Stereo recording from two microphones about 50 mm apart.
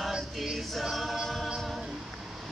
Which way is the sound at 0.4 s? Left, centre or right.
Centre.